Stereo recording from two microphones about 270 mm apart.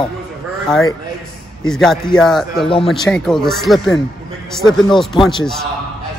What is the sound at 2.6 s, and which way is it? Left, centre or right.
Speech, centre.